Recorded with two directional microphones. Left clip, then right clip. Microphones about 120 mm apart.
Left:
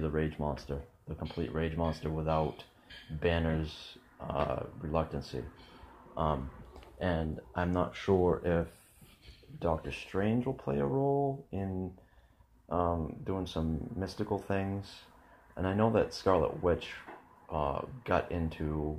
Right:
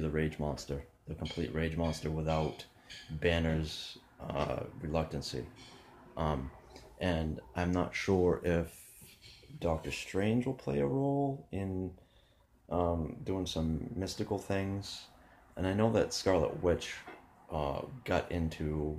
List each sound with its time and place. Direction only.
0.0 s speech: 15° right (ahead or behind)
7.0 s speech: 20° right (ahead or behind)